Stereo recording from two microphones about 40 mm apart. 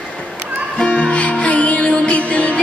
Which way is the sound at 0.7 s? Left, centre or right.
Left.